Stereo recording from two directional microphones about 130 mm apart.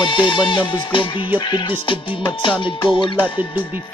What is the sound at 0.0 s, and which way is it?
Music, 40° left (ahead or behind).